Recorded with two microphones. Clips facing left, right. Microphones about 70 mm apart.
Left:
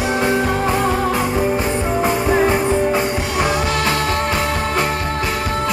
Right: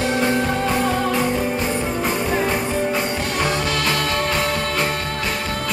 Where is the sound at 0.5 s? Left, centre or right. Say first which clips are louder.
Left 2 dB; left.